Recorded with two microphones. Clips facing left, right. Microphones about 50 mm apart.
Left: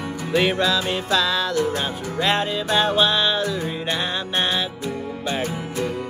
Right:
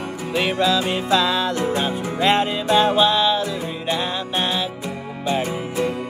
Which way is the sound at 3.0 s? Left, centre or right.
Centre.